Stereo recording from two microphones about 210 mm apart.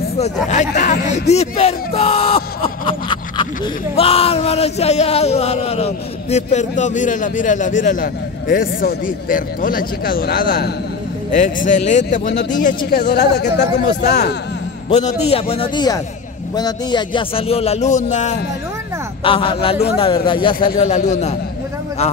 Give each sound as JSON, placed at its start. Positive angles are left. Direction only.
{"t": 0.2, "sound": "speech", "side_deg": 35}
{"t": 12.9, "sound": "speech", "side_deg": 55}
{"t": 14.9, "sound": "speech", "side_deg": 30}